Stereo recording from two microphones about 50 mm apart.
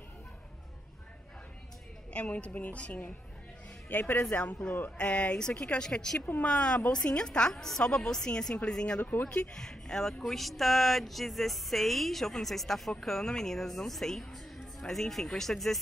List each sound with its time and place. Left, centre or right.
2.1 s a woman's voice: left
9.0 s speech: left
9.3 s a woman's voice: left; by 15.8 s centre